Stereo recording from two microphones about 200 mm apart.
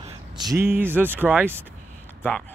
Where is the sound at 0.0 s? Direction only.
20° right (ahead or behind).